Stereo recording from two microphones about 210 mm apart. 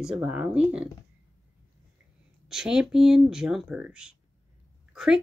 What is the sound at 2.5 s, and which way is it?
Speech, 5° right (ahead or behind).